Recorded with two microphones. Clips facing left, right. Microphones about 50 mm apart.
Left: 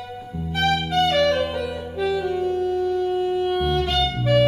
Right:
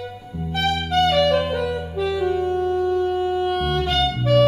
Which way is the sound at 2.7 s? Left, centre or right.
Right.